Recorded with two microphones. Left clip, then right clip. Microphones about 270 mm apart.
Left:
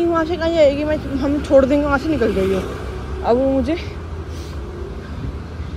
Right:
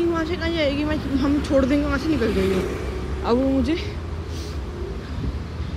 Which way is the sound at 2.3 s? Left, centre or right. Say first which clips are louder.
Left 3 dB; right.